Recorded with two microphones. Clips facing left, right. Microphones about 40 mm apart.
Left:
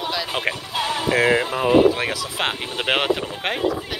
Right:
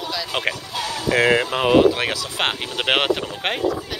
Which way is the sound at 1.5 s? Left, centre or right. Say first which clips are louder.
Even; right.